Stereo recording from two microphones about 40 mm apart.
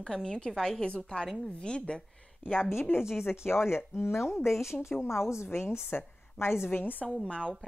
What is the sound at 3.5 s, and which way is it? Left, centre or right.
A woman's voice, left.